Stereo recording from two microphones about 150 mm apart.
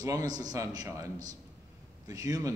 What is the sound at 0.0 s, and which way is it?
A man's voice, 20° right (ahead or behind).